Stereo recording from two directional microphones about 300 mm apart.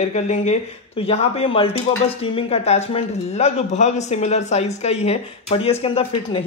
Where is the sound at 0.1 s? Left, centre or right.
Left.